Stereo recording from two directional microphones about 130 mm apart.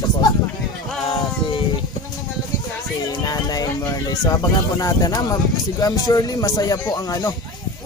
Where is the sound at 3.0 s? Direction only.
30° left (ahead or behind).